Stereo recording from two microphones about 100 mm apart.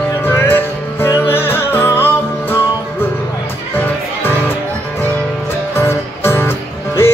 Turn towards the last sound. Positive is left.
turn(degrees=25)  # may be behind; listen again after turning